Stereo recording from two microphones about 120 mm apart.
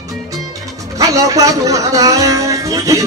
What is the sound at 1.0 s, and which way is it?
Speech, 30° right (ahead or behind).